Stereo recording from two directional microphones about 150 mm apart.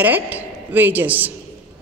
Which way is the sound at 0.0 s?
10° right (ahead or behind).